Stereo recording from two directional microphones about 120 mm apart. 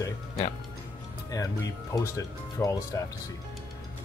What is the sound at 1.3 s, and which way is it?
Speech, 30° left (ahead or behind).